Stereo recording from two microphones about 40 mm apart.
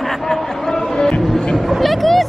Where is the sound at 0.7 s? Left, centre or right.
Centre.